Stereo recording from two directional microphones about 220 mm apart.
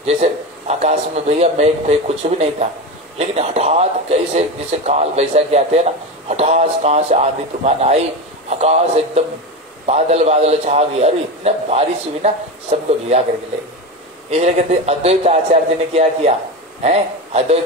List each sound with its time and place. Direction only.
0.0 s a man's voice: 30° right (ahead or behind)
14.3 s a man's voice: 30° right (ahead or behind)